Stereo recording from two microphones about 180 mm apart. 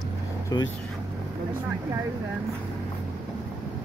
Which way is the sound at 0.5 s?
20° left (ahead or behind).